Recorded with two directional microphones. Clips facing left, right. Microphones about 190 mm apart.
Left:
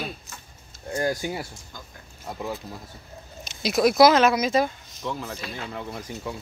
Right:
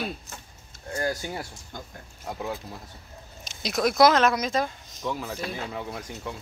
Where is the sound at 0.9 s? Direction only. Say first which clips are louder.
Left 3 dB; 15° left (ahead or behind).